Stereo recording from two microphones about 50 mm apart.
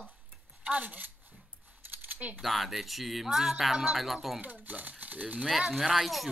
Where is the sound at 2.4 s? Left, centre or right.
Centre.